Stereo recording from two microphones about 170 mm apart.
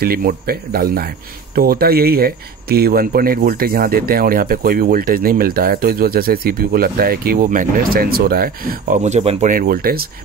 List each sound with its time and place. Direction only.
0.0 s speech: 60° right (ahead or behind); by 9.5 s 40° right (ahead or behind)
9.5 s speech: 60° right (ahead or behind)